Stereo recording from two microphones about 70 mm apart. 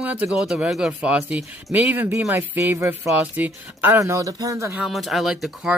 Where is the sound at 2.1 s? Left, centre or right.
Right.